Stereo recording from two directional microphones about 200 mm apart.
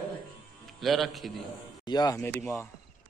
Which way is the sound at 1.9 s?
20° left (ahead or behind).